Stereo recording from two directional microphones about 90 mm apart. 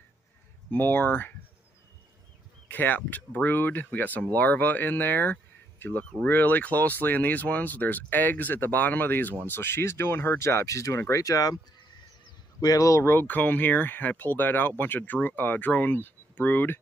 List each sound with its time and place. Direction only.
0.7 s speech: 20° left (ahead or behind)
2.7 s speech: 20° left (ahead or behind); by 13.0 s 40° left (ahead or behind)
13.0 s speech: 25° left (ahead or behind)